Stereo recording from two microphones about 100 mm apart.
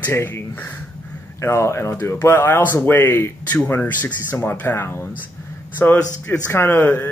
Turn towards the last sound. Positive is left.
turn(degrees=20)  # may be behind; listen again after turning